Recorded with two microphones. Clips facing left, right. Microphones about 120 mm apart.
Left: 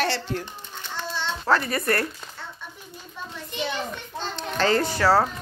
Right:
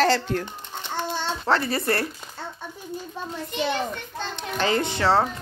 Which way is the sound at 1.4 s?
30° right (ahead or behind).